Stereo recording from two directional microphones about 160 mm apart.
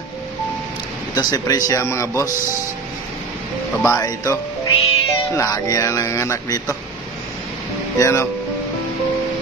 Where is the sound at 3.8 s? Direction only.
20° left (ahead or behind).